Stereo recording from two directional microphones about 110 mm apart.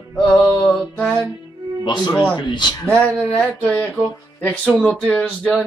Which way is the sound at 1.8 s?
40° left (ahead or behind).